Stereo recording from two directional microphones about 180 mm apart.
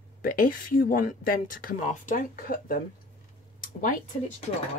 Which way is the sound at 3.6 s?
45° left (ahead or behind).